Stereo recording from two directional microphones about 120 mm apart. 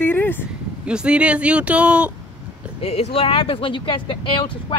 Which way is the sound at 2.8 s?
60° left (ahead or behind).